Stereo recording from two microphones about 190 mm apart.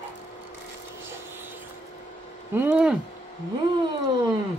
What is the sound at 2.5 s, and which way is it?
Speech, 10° right (ahead or behind).